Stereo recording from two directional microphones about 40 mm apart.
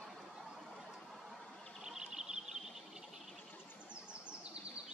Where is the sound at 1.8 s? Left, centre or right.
Centre.